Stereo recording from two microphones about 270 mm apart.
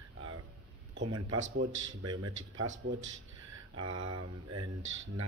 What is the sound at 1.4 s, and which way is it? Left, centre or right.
Speech, right.